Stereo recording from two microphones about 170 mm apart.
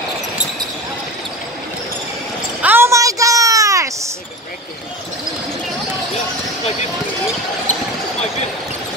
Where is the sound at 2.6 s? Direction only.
15° right (ahead or behind).